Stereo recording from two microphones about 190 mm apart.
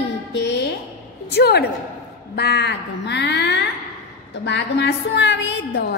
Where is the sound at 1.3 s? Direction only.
60° left (ahead or behind).